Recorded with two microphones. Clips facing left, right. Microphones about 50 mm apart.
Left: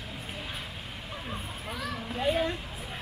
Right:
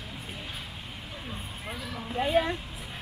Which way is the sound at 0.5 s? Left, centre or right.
Left.